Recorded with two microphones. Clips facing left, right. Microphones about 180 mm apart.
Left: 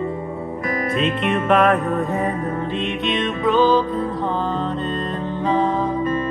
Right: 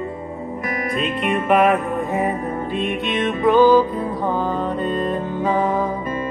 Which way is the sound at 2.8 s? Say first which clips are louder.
Right 2 dB; 50° right (ahead or behind).